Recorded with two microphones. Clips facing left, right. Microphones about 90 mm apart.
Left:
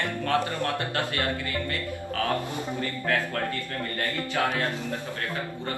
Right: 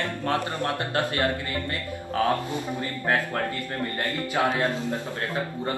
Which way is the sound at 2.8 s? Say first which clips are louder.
Right 1 dB; 25° right (ahead or behind).